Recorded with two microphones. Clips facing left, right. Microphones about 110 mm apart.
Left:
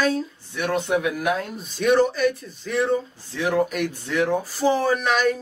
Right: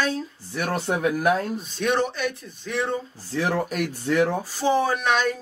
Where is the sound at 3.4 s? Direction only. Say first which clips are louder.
Left 2 dB; 40° right (ahead or behind).